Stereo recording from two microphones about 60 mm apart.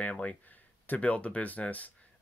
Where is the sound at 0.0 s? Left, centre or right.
Left.